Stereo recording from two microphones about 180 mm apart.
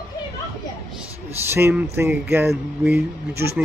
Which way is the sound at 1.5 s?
15° right (ahead or behind).